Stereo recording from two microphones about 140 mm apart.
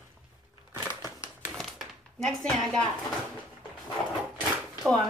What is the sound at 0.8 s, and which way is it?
Crumpling, 20° left (ahead or behind).